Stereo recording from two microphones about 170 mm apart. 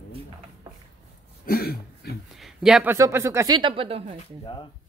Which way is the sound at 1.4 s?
65° left (ahead or behind).